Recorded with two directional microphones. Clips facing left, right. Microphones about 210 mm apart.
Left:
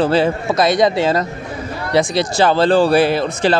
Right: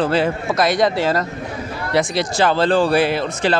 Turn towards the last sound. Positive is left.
turn(degrees=35)  # may be behind; listen again after turning